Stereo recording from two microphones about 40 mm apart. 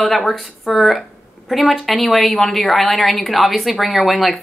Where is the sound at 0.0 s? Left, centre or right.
Centre.